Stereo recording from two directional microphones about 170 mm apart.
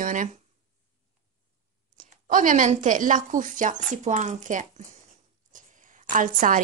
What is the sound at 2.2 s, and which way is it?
Speech, 50° right (ahead or behind).